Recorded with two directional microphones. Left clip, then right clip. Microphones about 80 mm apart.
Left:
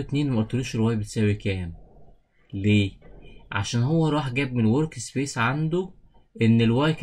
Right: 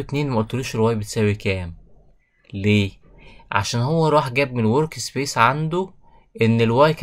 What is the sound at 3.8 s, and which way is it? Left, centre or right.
Speech, right.